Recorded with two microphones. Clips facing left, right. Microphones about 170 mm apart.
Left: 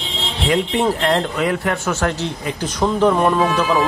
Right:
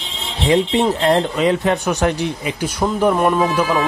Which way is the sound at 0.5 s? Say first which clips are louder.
Right 3 dB; 20° right (ahead or behind).